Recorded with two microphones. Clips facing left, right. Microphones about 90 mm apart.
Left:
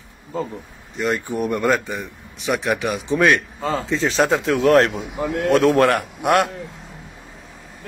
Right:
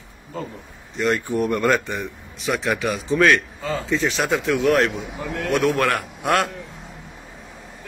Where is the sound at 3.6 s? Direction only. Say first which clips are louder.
Left 1 dB; 30° left (ahead or behind).